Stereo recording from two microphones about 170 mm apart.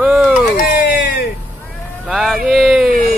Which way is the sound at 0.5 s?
55° left (ahead or behind).